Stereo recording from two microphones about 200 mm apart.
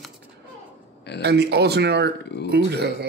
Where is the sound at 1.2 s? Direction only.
55° right (ahead or behind).